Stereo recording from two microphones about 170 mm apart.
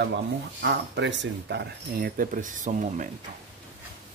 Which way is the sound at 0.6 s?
90° right.